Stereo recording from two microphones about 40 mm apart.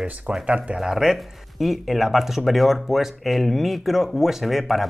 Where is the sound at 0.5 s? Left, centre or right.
Right.